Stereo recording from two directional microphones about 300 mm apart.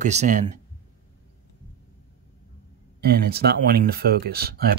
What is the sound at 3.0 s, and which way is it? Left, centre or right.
Speech, right.